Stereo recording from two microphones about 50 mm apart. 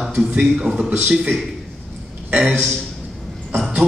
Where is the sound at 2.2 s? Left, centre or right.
Right.